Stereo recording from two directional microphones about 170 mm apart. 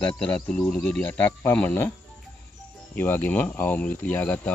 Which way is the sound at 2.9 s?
10° left (ahead or behind).